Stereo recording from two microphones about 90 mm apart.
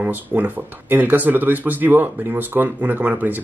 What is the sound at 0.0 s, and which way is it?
Speech, 20° right (ahead or behind).